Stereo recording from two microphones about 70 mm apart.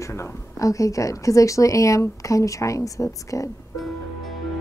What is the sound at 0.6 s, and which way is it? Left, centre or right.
A woman's voice, left.